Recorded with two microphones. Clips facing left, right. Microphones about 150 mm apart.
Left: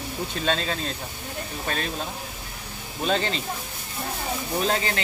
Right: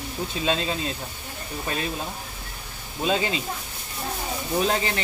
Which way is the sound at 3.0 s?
10° right (ahead or behind).